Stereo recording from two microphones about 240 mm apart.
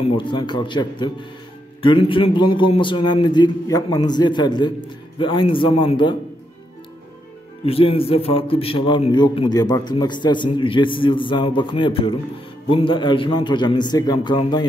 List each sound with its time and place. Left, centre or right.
0.0 s a man's voice: centre
7.6 s a man's voice: left